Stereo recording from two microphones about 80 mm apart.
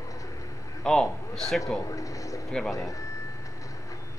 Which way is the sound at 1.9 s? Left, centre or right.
Left.